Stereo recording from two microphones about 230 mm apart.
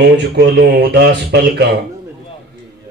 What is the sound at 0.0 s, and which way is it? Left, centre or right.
Speech, right.